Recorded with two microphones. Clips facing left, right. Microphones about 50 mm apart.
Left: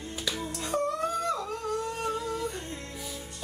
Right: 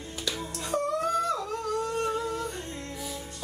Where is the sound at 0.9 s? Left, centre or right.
Centre.